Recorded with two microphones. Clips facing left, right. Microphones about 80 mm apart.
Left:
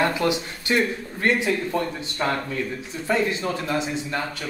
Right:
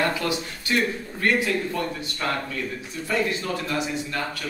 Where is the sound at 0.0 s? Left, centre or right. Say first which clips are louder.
Left 3 dB; left.